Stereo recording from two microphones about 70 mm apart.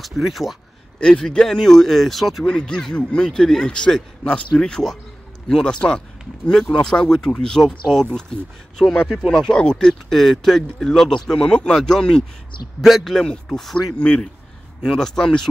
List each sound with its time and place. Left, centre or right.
0.0 s speech: centre
0.9 s speech: centre
2.4 s speech: centre
12.8 s speech: centre